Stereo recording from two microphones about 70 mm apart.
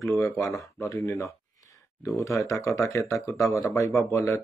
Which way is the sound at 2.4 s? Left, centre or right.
Left.